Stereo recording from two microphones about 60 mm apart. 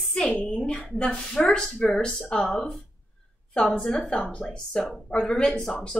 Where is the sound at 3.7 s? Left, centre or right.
Centre.